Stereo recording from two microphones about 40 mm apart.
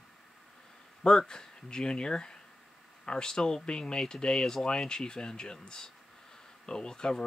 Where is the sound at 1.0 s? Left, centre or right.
Left.